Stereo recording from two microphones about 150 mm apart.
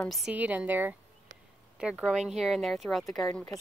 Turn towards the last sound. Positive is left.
turn(degrees=5)  # may be behind; listen again after turning